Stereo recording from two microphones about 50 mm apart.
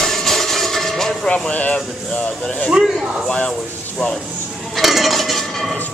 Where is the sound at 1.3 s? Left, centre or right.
Left.